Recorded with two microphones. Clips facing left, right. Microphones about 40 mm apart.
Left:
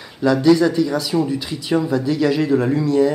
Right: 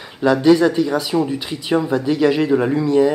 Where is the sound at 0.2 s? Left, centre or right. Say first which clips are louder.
Right 1 dB; right.